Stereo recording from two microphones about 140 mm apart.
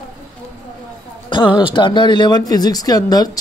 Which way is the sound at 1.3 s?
35° left (ahead or behind).